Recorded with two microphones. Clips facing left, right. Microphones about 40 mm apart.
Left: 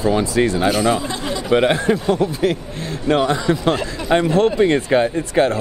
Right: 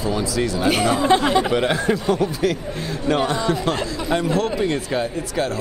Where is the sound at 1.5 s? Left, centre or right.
Left.